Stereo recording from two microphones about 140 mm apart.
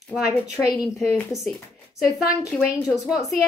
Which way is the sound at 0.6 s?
5° right (ahead or behind).